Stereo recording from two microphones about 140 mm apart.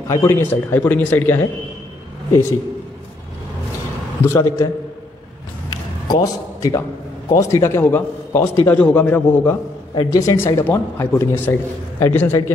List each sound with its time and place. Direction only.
0.1 s a man's voice: 15° left (ahead or behind)
4.2 s a man's voice: 20° left (ahead or behind)
5.7 s a sound: 25° left (ahead or behind)
7.3 s a man's voice: 20° left (ahead or behind)
9.9 s a man's voice: 25° left (ahead or behind)